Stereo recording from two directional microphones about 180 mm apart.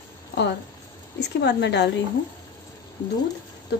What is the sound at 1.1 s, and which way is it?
Speech, 70° left (ahead or behind).